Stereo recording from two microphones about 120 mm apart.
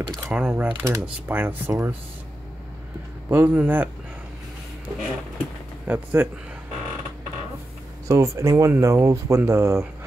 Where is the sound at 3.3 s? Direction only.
15° right (ahead or behind).